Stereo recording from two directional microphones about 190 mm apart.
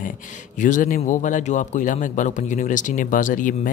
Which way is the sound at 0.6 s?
40° left (ahead or behind).